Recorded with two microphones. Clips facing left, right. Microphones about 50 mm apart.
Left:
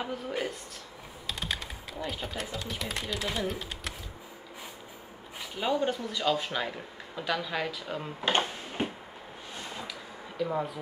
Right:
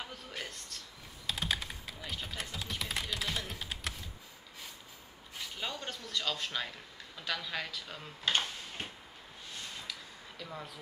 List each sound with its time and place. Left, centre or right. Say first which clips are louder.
0.0 s speech: left 10 dB; centre
1.2 s typing: even; centre
2.1 s speech: left 5 dB; centre
5.4 s speech: left 11 dB; centre
9.6 s a sound: left 5 dB; centre